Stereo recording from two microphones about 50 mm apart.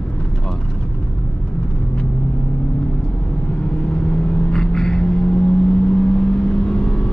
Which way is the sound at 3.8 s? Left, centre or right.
Centre.